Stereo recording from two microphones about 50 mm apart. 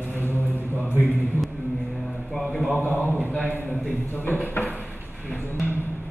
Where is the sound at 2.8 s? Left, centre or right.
Left.